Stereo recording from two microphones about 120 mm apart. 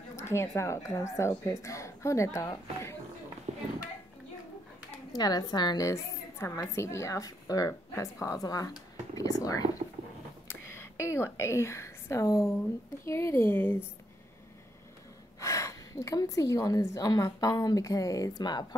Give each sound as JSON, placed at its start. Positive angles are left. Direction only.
{"t": 0.1, "sound": "a woman's voice", "side_deg": 20}
{"t": 3.5, "sound": "a sound", "side_deg": -75}
{"t": 5.1, "sound": "a woman's voice", "side_deg": 35}
{"t": 15.4, "sound": "a woman's voice", "side_deg": 25}